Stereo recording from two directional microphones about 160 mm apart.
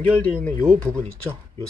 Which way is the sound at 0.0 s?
10° left (ahead or behind).